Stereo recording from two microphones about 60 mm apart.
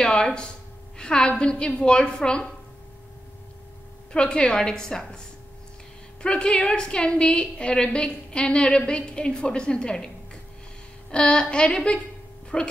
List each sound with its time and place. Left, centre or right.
0.0 s a sound: centre
1.4 s a woman's voice: centre
4.1 s a woman's voice: centre
6.2 s a woman's voice: centre